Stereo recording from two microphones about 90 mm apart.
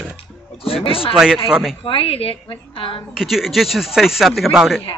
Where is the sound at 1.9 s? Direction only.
90° left.